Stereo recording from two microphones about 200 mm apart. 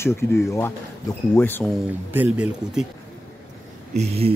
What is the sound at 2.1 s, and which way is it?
Speech, 10° right (ahead or behind).